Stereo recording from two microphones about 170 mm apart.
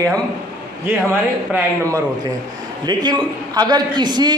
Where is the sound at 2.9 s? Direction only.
25° right (ahead or behind).